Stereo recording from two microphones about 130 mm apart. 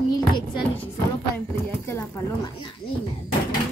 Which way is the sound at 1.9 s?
25° left (ahead or behind).